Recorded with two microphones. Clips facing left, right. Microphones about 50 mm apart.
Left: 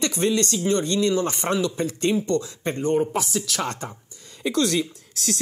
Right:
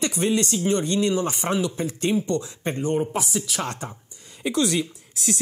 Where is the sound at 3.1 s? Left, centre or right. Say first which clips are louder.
Left 1 dB; centre.